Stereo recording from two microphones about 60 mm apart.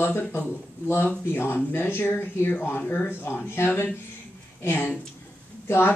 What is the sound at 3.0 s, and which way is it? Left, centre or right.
Speech, left.